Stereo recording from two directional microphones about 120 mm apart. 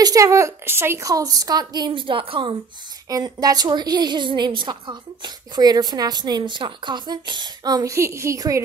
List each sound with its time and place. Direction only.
0.0 s a woman's voice: 25° right (ahead or behind); by 2.5 s 45° right (ahead or behind)
3.1 s a woman's voice: 30° right (ahead or behind)